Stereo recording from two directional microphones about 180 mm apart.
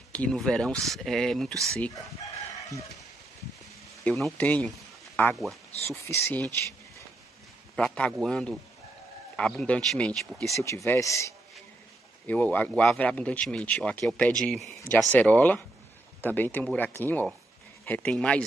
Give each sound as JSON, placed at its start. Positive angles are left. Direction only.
{"t": 0.1, "sound": "speech", "side_deg": 5}
{"t": 4.0, "sound": "speech", "side_deg": 5}
{"t": 5.9, "sound": "speech", "side_deg": 15}
{"t": 7.7, "sound": "speech", "side_deg": 5}
{"t": 10.6, "sound": "speech", "side_deg": 15}